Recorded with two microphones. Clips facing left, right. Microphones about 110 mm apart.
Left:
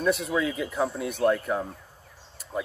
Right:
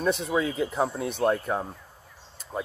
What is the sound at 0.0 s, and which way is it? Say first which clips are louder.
Speech: even; 30° right (ahead or behind).